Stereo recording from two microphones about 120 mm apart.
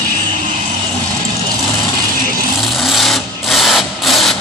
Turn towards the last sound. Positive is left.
turn(degrees=0)  # may be behind; listen again after turning